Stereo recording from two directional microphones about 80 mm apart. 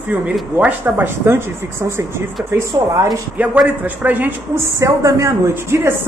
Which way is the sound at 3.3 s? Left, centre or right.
Centre.